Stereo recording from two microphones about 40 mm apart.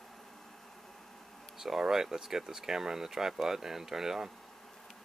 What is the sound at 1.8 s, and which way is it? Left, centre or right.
Speech, centre.